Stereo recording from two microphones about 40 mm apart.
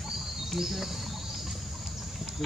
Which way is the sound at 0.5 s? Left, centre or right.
Centre.